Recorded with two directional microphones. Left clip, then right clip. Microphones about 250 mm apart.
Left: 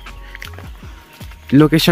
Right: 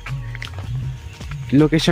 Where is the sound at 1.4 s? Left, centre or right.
Left.